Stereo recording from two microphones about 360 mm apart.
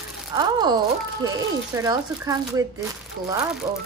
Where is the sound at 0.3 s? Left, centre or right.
Centre.